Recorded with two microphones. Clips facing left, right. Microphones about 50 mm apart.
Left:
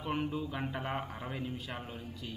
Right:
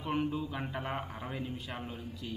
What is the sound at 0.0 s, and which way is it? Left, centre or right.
A man's voice, centre.